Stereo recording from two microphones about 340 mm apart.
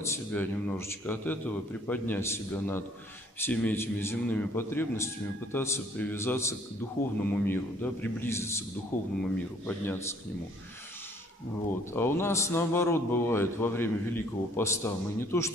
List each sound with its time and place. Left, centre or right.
0.0 s a man's voice: centre
11.9 s a man's voice: centre